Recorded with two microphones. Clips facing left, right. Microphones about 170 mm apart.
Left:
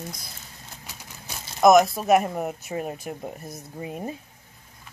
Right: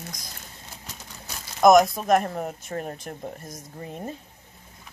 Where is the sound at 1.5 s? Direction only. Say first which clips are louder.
Even; centre (ahead or behind).